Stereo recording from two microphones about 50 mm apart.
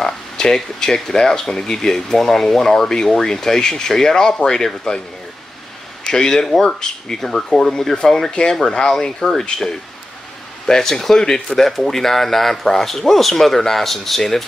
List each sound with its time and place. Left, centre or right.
0.0 s speech: centre
6.0 s speech: centre